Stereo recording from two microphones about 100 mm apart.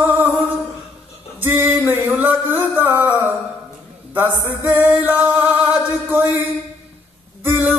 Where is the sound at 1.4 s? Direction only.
20° right (ahead or behind).